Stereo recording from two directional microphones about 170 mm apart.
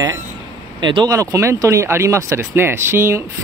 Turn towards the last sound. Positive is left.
turn(degrees=-15)  # may be behind; listen again after turning